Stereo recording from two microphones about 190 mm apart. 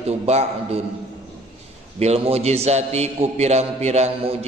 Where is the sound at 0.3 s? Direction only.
35° right (ahead or behind).